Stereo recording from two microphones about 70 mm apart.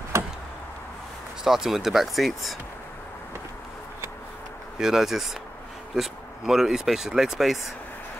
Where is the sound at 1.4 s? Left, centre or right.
Centre.